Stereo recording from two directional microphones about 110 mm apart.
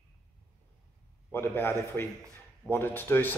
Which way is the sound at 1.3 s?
20° left (ahead or behind).